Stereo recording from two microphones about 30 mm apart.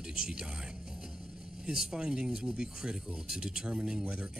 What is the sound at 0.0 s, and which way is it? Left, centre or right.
Speech, right.